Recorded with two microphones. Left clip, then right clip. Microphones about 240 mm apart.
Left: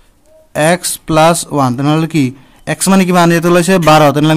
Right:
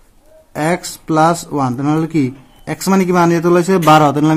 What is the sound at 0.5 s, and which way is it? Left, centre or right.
Speech, left.